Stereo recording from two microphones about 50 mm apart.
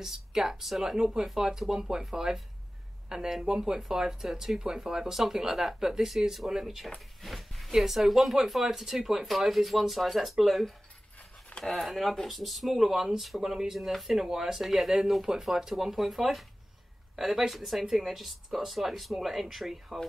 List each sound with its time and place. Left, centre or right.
0.0 s speech: centre
7.2 s a sound: centre
7.7 s speech: centre